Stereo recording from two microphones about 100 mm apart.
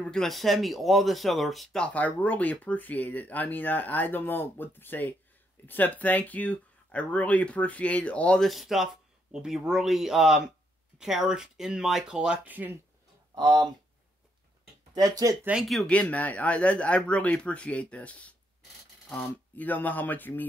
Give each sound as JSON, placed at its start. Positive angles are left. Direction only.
{"t": 0.0, "sound": "speech", "side_deg": 5}
{"t": 2.0, "sound": "speech", "side_deg": 15}
{"t": 8.5, "sound": "speech", "side_deg": 0}
{"t": 13.3, "sound": "speech", "side_deg": -40}
{"t": 15.0, "sound": "speech", "side_deg": -40}
{"t": 15.9, "sound": "speech", "side_deg": 15}